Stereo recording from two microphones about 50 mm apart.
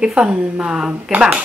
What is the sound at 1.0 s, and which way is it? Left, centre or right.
Speech, right.